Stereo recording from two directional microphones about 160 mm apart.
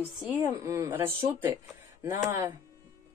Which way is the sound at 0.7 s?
20° right (ahead or behind).